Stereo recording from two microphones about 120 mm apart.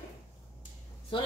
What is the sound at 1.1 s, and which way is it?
Speech, 45° left (ahead or behind).